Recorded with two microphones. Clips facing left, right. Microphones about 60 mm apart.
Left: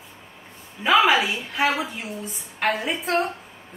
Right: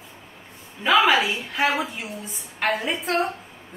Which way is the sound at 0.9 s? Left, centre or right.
Centre.